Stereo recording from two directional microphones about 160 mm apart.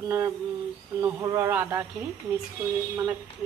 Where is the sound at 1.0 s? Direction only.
20° right (ahead or behind).